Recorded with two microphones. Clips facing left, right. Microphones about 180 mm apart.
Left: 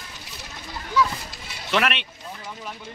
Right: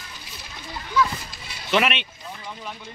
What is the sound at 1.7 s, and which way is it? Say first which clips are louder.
Speech: right 2 dB; centre (ahead or behind).